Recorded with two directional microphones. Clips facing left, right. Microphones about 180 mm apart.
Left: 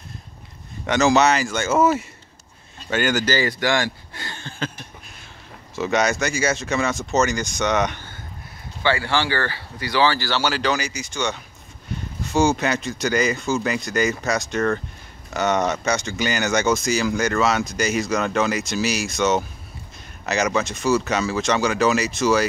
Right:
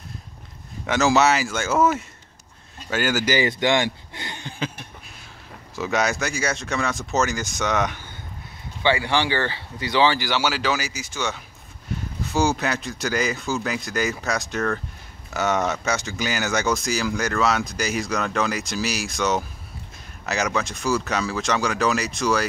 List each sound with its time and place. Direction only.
0.8 s speech: centre (ahead or behind)
2.9 s speech: 5° right (ahead or behind)
3.3 s speech: 20° right (ahead or behind)
5.8 s speech: centre (ahead or behind)
8.8 s speech: 15° right (ahead or behind)
11.9 s a sound: centre (ahead or behind)
12.3 s speech: centre (ahead or behind)